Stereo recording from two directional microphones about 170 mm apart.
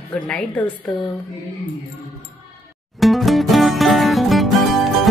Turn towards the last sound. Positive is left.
turn(degrees=0)  # may be behind; listen again after turning